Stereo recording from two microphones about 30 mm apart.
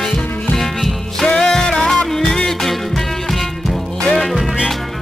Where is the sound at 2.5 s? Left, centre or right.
Centre.